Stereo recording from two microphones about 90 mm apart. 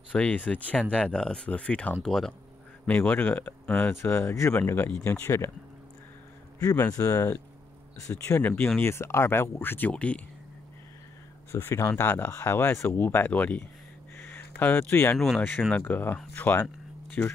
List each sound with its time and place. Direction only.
0.1 s speech: 15° left (ahead or behind)
2.9 s speech: 20° left (ahead or behind)
6.6 s speech: 40° left (ahead or behind)
8.4 s speech: 20° left (ahead or behind)
11.5 s speech: 35° left (ahead or behind); by 13.7 s 15° left (ahead or behind)
14.1 s a sound: 20° left (ahead or behind)
15.1 s speech: centre (ahead or behind)
15.7 s speech: 20° left (ahead or behind)